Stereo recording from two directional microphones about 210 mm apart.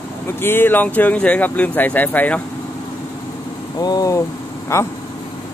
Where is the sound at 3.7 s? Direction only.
20° left (ahead or behind).